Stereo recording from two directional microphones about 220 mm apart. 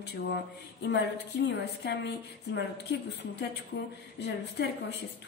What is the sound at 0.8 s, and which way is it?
A woman's voice, 50° left (ahead or behind).